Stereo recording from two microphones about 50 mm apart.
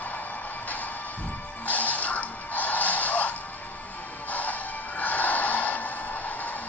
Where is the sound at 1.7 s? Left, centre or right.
Left.